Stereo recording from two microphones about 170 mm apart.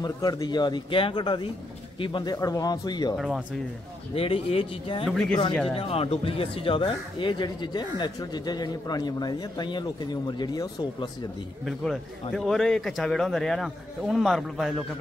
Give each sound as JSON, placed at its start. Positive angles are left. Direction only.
{"t": 0.0, "sound": "speech", "side_deg": 20}
{"t": 3.2, "sound": "a man's voice", "side_deg": -5}
{"t": 4.1, "sound": "speech", "side_deg": 35}
{"t": 11.6, "sound": "a man's voice", "side_deg": 0}